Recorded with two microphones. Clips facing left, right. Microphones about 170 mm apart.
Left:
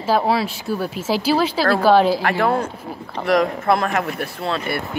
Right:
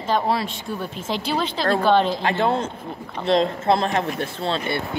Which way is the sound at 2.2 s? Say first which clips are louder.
Left 2 dB; 20° right (ahead or behind).